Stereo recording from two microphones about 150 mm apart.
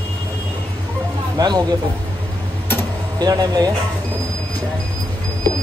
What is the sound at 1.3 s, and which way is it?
Speech, 25° right (ahead or behind).